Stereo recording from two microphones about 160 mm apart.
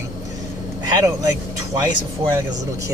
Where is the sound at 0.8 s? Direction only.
25° right (ahead or behind).